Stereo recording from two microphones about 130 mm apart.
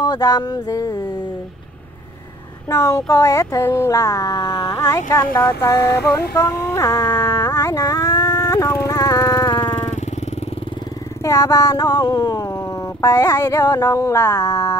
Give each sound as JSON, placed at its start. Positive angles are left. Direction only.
{"t": 0.0, "sound": "speech", "side_deg": 30}
{"t": 2.7, "sound": "speech", "side_deg": 25}
{"t": 5.1, "sound": "a sound", "side_deg": 20}
{"t": 11.2, "sound": "speech", "side_deg": 25}